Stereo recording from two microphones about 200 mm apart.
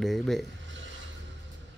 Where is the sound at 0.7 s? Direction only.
65° right (ahead or behind).